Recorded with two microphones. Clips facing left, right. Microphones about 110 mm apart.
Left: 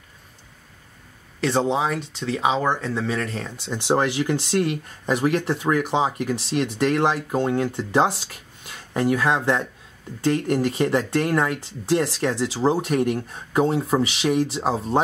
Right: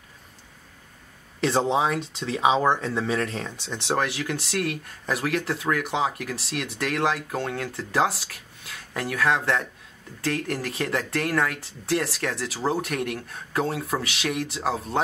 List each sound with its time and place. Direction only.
1.4 s speech: centre (ahead or behind)
3.7 s speech: 20° left (ahead or behind)